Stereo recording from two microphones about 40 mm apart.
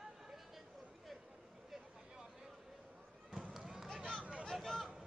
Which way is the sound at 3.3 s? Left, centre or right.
Right.